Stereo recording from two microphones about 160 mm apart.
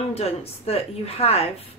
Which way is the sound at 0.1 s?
40° left (ahead or behind).